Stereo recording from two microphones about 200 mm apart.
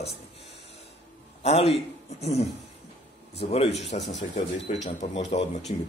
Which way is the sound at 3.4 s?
30° left (ahead or behind).